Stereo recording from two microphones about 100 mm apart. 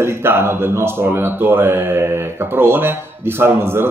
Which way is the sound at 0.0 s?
25° right (ahead or behind).